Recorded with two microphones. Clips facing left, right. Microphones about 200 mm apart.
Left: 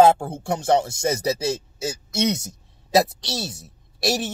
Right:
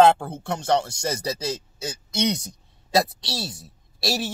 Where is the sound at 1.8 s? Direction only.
25° left (ahead or behind).